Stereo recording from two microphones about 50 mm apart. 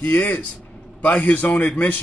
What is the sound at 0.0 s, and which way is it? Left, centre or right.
A man's voice, left.